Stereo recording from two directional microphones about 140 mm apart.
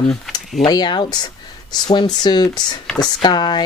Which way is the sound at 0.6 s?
30° left (ahead or behind).